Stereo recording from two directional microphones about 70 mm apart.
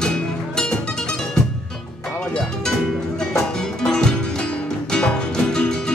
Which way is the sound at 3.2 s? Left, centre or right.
Centre.